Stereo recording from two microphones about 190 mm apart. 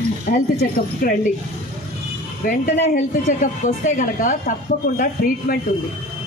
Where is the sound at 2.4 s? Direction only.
35° left (ahead or behind).